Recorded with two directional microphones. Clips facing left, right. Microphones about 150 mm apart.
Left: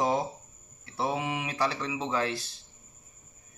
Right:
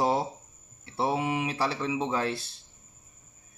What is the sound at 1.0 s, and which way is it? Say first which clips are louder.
A man's voice: right 3 dB; 30° right (ahead or behind).